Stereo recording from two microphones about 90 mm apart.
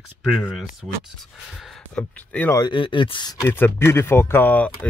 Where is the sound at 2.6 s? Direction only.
60° left (ahead or behind).